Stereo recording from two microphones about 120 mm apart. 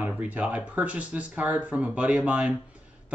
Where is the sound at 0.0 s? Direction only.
15° right (ahead or behind).